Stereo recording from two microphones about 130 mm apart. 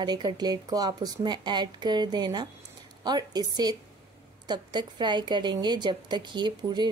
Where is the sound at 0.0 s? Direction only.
35° right (ahead or behind).